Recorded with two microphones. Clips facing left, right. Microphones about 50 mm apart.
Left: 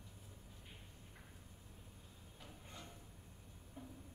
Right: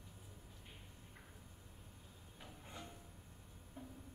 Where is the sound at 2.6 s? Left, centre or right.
Centre.